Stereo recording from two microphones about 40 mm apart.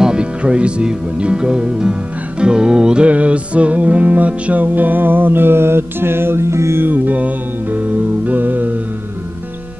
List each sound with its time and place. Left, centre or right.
0.0 s speech: right
3.1 s music: right
6.9 s music: right